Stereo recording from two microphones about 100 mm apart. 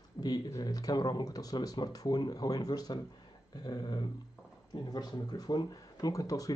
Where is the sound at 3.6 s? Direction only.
45° left (ahead or behind).